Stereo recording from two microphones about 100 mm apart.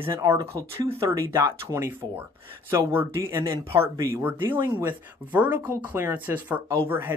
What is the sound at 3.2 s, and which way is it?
Speech, 30° right (ahead or behind).